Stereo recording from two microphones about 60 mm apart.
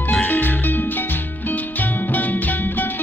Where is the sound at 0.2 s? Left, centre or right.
Left.